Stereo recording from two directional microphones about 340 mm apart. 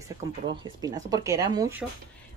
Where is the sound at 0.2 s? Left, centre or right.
Centre.